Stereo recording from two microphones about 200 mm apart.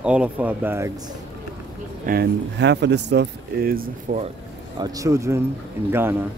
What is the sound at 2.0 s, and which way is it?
Speech, 50° right (ahead or behind).